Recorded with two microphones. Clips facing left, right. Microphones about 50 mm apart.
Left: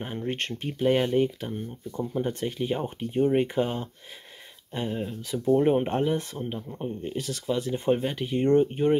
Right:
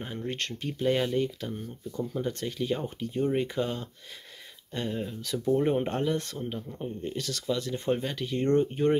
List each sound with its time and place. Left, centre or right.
0.3 s speech: left
4.7 s speech: centre